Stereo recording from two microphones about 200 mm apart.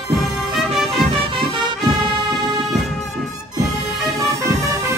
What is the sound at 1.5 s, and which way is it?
Music, 20° right (ahead or behind).